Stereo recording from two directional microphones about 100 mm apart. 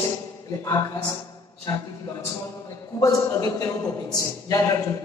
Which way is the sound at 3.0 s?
35° left (ahead or behind).